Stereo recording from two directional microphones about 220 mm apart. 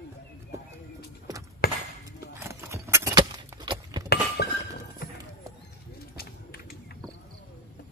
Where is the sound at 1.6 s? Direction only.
45° left (ahead or behind).